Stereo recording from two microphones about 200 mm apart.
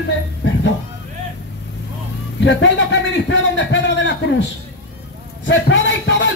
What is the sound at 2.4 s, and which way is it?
A man's voice, 65° left (ahead or behind).